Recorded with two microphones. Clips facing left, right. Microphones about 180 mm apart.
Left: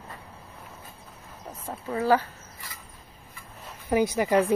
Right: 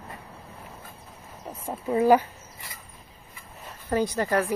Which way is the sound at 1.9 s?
15° right (ahead or behind).